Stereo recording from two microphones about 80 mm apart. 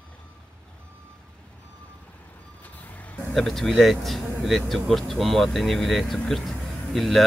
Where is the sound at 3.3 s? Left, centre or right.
Centre.